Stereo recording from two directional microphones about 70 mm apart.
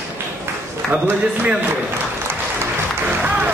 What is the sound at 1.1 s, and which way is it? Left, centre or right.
Speech, right.